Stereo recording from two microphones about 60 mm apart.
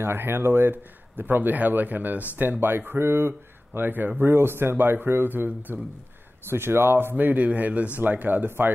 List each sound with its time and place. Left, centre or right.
0.0 s speech: right
6.5 s speech: right